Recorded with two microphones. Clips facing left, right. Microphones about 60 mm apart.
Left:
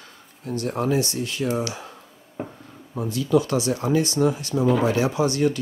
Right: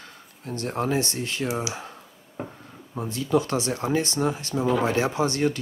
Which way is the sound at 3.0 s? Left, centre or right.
Right.